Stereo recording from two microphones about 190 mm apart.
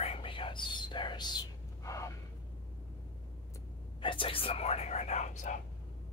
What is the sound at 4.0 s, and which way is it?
Speech, 25° left (ahead or behind).